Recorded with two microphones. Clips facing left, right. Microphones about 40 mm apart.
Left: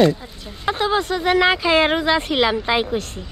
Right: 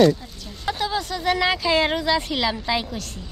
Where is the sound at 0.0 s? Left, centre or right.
Left.